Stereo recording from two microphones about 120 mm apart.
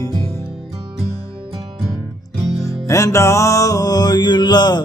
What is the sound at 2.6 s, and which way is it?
Music, 25° left (ahead or behind).